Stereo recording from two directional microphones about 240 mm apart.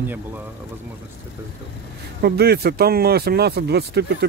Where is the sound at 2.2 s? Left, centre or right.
Right.